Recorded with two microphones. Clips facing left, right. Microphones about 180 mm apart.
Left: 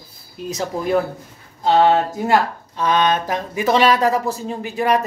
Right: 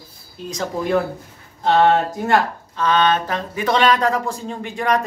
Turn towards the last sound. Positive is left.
turn(degrees=5)  # may be behind; listen again after turning